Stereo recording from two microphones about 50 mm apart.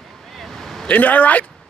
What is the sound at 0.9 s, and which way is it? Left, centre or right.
Speech, left.